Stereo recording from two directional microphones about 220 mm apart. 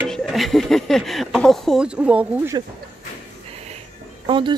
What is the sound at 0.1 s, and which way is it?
Speech, centre (ahead or behind).